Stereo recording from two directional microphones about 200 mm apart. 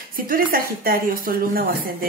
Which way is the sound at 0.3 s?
45° right (ahead or behind).